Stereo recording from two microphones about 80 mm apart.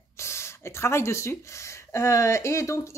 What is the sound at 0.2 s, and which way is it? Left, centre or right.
Speech, left.